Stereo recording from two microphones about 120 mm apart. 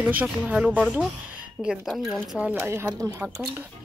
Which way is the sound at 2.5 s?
20° right (ahead or behind).